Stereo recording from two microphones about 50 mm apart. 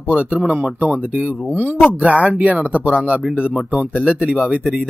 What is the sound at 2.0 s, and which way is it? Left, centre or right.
Speech, right.